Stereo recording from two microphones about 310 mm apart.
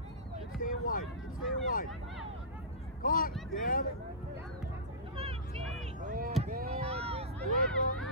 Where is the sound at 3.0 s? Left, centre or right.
Left.